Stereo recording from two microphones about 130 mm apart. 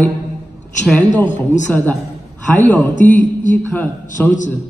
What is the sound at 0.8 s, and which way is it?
A woman's voice, 10° left (ahead or behind).